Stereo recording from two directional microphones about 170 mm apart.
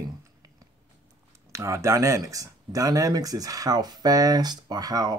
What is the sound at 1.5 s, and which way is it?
Speech, 15° right (ahead or behind).